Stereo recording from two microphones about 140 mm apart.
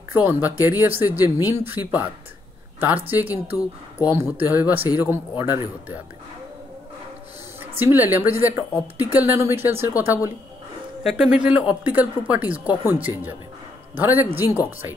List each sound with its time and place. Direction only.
0.1 s speech: 15° right (ahead or behind)
3.1 s speech: 15° right (ahead or behind)
4.8 s speech: 25° left (ahead or behind)
5.1 s speech: 15° right (ahead or behind)
7.8 s speech: 15° right (ahead or behind)
11.1 s speech: 5° right (ahead or behind)